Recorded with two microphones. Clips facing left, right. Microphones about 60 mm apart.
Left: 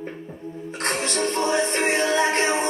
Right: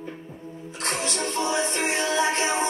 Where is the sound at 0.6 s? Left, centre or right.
Left.